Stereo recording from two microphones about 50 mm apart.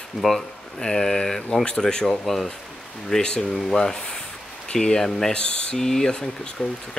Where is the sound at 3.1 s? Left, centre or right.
Centre.